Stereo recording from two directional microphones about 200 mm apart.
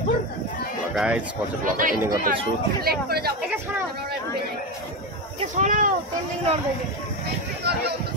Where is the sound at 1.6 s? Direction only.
45° right (ahead or behind).